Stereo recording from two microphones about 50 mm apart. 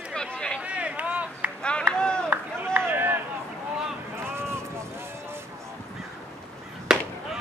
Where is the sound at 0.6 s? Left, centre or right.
Right.